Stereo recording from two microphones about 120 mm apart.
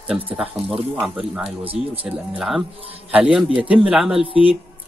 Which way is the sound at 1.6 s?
50° right (ahead or behind).